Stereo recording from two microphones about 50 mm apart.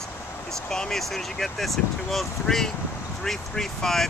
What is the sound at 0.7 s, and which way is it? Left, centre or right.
Speech, centre.